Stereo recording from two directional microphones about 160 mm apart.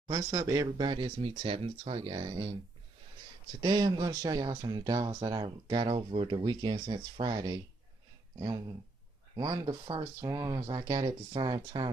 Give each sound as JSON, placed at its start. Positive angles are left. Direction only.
{"t": 0.1, "sound": "speech", "side_deg": -20}
{"t": 3.6, "sound": "speech", "side_deg": -25}